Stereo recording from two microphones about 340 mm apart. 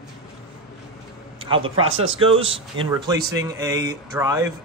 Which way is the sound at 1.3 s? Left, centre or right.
Centre.